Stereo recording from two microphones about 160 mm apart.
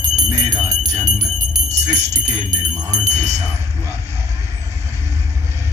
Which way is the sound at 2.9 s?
45° right (ahead or behind).